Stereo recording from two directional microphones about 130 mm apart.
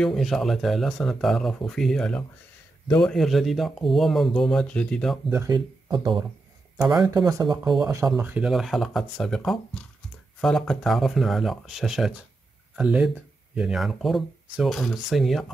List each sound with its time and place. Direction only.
0.0 s speech: centre (ahead or behind)
5.5 s speech: 35° right (ahead or behind)
8.2 s speech: 10° right (ahead or behind)
8.5 s speech: centre (ahead or behind)